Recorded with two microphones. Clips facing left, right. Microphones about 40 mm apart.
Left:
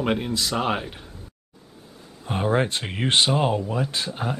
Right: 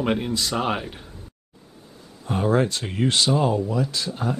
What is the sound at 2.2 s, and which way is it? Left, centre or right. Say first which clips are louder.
Speech: right 2 dB; left.